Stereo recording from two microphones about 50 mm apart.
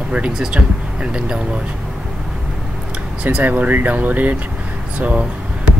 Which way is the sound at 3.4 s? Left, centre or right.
Right.